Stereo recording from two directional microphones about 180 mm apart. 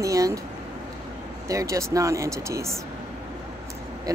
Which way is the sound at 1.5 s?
15° right (ahead or behind).